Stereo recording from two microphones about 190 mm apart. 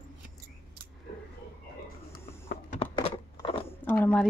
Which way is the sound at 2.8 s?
25° left (ahead or behind).